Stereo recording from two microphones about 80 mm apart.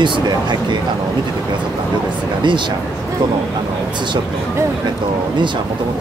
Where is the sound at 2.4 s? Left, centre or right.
Right.